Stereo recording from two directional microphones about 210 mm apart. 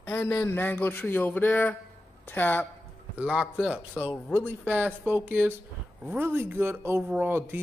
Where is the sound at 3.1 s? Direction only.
5° right (ahead or behind).